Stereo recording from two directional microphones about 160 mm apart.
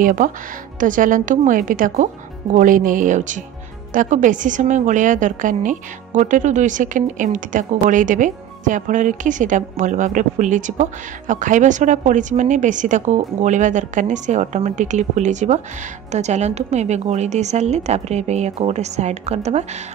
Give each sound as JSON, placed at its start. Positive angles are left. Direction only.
{"t": 0.0, "sound": "a woman's voice", "side_deg": -55}